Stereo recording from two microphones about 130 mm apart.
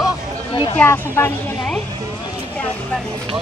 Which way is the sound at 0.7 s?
15° left (ahead or behind).